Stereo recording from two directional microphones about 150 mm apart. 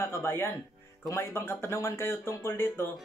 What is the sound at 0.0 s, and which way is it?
Speech, 15° left (ahead or behind).